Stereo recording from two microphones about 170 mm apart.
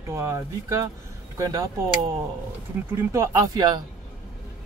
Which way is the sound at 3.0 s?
20° right (ahead or behind).